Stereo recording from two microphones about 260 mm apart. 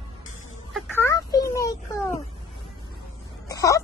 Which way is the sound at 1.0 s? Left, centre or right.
Centre.